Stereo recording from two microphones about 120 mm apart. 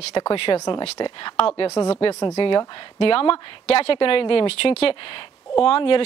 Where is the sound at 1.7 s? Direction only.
25° left (ahead or behind).